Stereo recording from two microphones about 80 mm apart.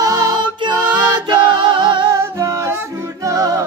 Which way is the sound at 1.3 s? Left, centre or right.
Right.